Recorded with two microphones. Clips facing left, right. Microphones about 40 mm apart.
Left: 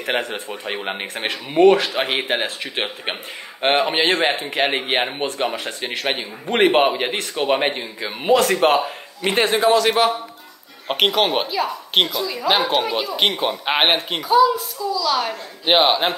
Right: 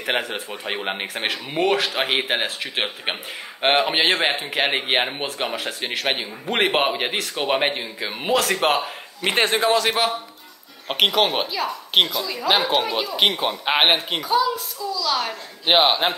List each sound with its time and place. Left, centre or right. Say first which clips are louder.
0.0 s speech: left 1 dB; centre
9.4 s a man's voice: left 2 dB; right
9.8 s speech: left 4 dB; centre